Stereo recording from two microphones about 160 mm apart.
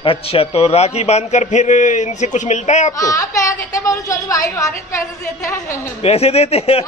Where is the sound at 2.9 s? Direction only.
20° left (ahead or behind).